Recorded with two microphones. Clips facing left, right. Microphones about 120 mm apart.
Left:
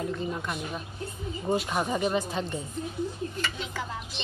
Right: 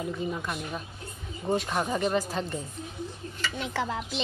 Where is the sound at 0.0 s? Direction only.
5° right (ahead or behind).